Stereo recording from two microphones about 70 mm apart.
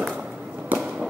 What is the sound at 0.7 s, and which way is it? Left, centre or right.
Fireworks, right.